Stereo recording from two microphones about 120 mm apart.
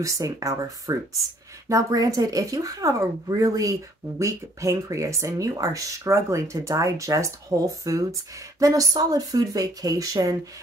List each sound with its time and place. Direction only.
0.0 s speech: 30° right (ahead or behind)